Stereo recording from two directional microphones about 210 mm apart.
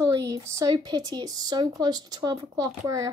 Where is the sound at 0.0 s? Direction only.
15° right (ahead or behind).